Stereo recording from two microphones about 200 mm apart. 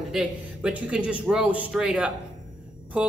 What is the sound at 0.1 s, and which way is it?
A man's voice, 5° right (ahead or behind).